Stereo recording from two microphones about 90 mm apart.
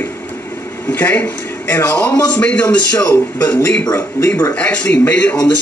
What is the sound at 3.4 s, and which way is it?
Speech, 35° left (ahead or behind).